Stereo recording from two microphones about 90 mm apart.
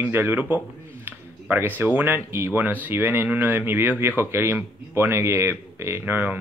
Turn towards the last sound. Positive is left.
turn(degrees=-20)  # may be behind; listen again after turning